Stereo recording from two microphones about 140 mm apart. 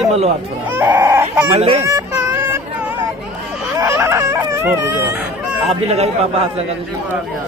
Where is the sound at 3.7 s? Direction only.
20° right (ahead or behind).